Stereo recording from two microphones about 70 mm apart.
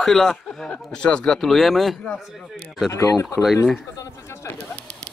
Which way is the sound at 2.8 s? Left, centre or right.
Left.